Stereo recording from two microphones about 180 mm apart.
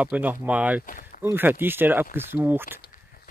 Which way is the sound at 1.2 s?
10° right (ahead or behind).